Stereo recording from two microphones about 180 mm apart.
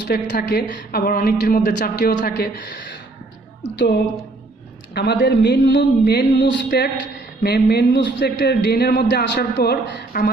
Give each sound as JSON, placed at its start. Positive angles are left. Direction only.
{"t": 0.1, "sound": "a woman's voice", "side_deg": 55}